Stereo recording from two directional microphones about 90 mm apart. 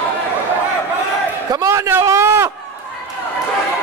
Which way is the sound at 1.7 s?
30° right (ahead or behind).